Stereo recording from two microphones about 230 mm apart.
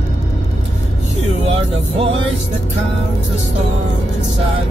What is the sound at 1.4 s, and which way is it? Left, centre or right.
Music, right.